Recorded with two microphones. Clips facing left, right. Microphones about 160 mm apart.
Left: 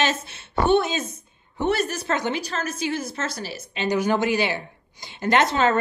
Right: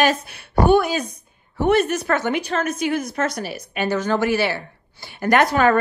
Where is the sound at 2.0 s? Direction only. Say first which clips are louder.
Right 3 dB; 15° left (ahead or behind).